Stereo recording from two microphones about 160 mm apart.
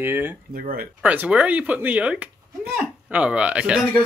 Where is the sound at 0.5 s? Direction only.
70° right (ahead or behind).